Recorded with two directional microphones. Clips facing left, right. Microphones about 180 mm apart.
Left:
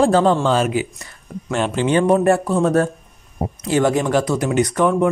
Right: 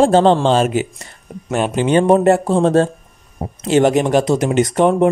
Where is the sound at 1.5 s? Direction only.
15° right (ahead or behind).